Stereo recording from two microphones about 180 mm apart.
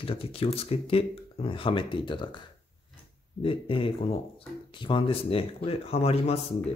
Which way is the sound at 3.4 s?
30° left (ahead or behind).